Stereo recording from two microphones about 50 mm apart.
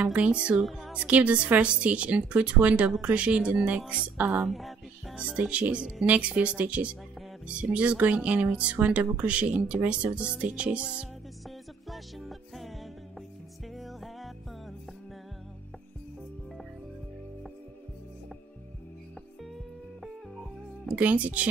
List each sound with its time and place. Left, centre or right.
0.1 s speech: right
0.6 s music: centre
0.9 s speech: right
4.3 s music: centre
5.1 s speech: right
11.4 s music: centre
13.7 s music: centre
20.9 s speech: right